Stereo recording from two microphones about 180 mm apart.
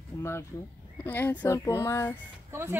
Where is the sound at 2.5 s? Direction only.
15° right (ahead or behind).